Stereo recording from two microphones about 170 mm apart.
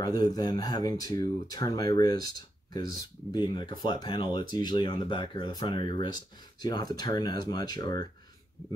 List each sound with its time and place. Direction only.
0.0 s speech: 25° left (ahead or behind)